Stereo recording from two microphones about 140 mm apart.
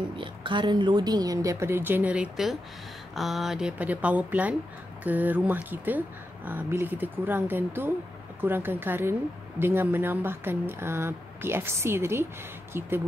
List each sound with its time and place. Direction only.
0.2 s a woman's voice: 35° right (ahead or behind); by 12.9 s 15° right (ahead or behind)